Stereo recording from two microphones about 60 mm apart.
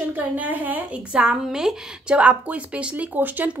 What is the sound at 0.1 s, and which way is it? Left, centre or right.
Speech, right.